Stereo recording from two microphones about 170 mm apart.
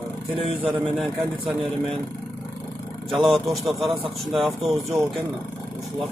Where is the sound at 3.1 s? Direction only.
Centre (ahead or behind).